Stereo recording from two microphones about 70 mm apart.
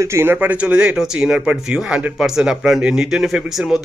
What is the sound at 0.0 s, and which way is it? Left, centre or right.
A man's voice, right.